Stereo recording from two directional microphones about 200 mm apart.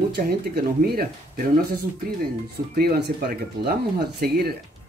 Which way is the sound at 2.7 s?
50° right (ahead or behind).